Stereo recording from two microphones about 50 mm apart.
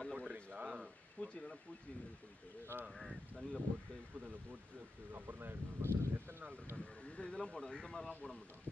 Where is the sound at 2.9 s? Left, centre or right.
Centre.